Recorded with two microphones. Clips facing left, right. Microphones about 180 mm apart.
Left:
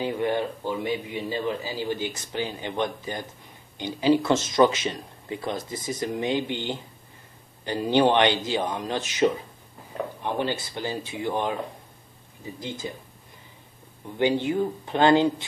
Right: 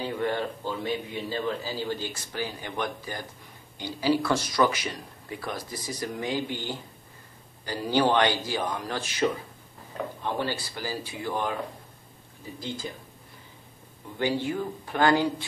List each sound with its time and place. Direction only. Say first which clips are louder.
0.0 s a man's voice: left 3 dB; 15° left (ahead or behind)
12.5 s speech: left 1 dB; 20° left (ahead or behind)
14.1 s speech: left 4 dB; 20° left (ahead or behind)